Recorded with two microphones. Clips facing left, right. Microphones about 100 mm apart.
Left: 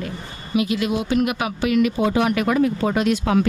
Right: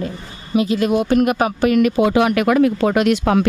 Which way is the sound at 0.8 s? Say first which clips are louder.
Right 5 dB; 50° right (ahead or behind).